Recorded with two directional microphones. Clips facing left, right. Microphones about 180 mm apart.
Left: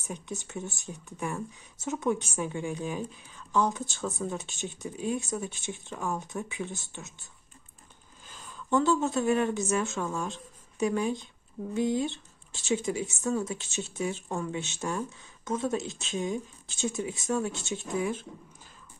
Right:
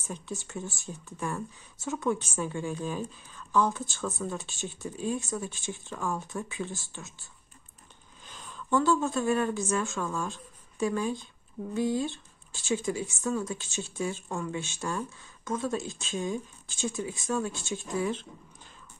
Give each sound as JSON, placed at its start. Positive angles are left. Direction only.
{"t": 0.0, "sound": "speech", "side_deg": 15}
{"t": 8.6, "sound": "speech", "side_deg": 20}
{"t": 18.0, "sound": "speech", "side_deg": 10}